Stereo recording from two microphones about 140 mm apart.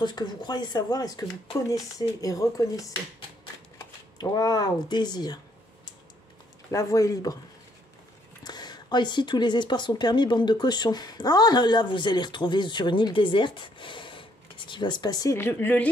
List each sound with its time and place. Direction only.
0.0 s speech: 30° left (ahead or behind)
6.7 s speech: 25° left (ahead or behind)
8.5 s speech: 30° left (ahead or behind)
15.3 s a woman's voice: 15° left (ahead or behind)